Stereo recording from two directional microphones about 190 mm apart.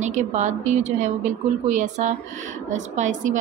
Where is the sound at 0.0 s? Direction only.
40° right (ahead or behind).